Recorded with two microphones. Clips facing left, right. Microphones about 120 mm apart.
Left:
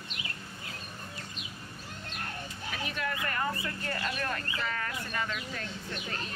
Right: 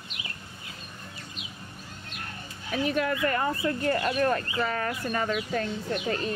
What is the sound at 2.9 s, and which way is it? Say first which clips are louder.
Speech: right 6 dB; 35° right (ahead or behind).